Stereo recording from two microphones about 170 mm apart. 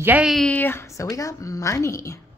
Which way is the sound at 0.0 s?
10° right (ahead or behind).